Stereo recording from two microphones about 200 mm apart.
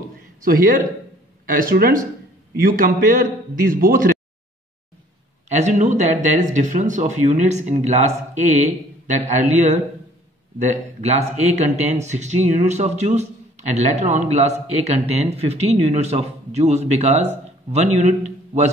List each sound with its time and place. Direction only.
0.4 s a man's voice: 45° right (ahead or behind)
5.6 s speech: 35° right (ahead or behind)